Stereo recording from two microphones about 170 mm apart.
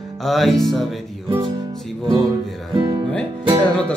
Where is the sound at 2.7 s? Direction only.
25° right (ahead or behind).